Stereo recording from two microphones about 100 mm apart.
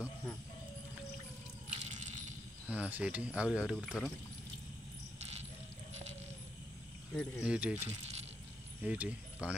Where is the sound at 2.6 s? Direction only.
15° right (ahead or behind).